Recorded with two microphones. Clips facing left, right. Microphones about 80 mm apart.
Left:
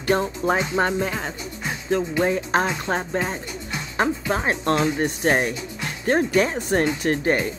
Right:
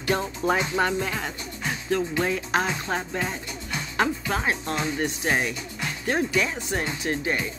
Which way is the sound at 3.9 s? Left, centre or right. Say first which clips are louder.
Left 3 dB; left.